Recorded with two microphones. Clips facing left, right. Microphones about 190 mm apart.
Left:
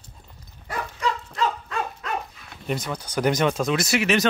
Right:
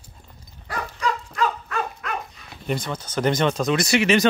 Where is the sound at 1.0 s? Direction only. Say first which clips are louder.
Right 1 dB; 25° left (ahead or behind).